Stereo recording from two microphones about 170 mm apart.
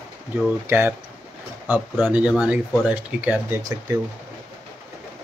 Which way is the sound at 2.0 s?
10° right (ahead or behind).